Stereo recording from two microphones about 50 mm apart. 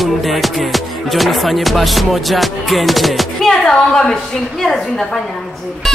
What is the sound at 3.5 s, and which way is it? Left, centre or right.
Music, centre.